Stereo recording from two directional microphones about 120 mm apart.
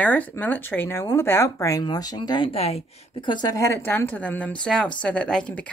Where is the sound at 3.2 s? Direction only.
35° left (ahead or behind); by 5.7 s 5° left (ahead or behind).